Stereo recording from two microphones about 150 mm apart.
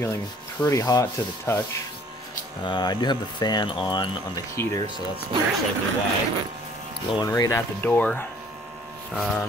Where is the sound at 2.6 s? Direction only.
30° left (ahead or behind).